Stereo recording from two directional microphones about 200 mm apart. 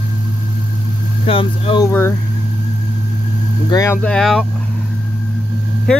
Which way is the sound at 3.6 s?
15° left (ahead or behind).